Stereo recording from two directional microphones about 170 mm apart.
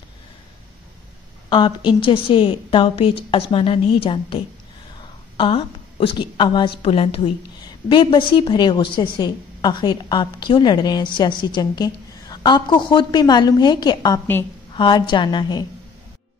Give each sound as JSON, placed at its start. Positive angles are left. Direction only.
{"t": 1.5, "sound": "a woman's voice", "side_deg": 25}
{"t": 5.4, "sound": "a woman's voice", "side_deg": 30}